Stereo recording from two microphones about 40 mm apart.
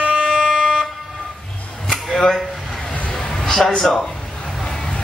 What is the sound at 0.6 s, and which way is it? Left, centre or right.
Fire alarm, centre.